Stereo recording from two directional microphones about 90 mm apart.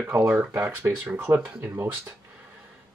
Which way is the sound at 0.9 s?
15° right (ahead or behind).